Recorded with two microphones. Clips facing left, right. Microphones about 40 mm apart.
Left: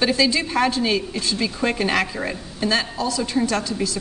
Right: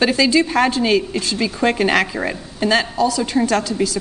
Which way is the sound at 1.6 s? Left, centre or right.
Right.